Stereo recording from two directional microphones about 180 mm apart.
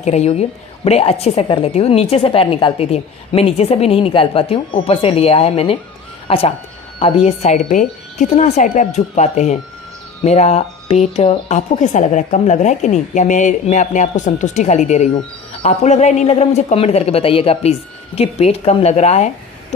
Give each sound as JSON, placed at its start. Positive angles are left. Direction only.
{"t": 0.0, "sound": "a woman's voice", "side_deg": 35}